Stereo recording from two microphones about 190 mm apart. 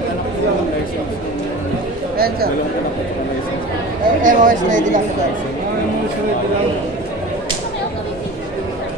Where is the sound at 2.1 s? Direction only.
55° right (ahead or behind).